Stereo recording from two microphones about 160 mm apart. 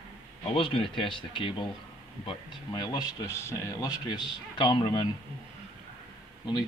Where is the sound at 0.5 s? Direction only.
35° left (ahead or behind).